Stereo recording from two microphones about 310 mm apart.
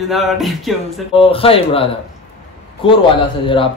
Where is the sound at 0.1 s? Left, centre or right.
Centre.